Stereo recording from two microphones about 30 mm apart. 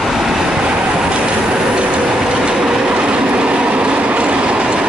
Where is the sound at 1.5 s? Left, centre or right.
Right.